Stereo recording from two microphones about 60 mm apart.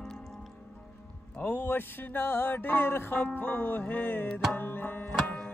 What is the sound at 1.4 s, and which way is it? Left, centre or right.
Music, left.